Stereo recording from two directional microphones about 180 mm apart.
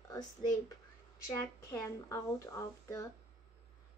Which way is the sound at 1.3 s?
15° left (ahead or behind).